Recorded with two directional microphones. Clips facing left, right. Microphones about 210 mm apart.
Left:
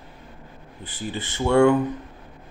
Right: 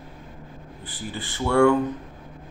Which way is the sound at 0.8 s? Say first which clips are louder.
Left 3 dB; 20° left (ahead or behind).